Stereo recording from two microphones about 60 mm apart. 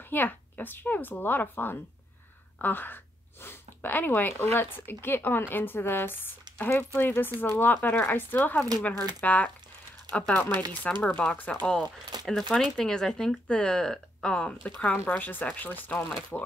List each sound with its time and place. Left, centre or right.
0.1 s speech: left
12.3 s speech: centre; by 16.5 s left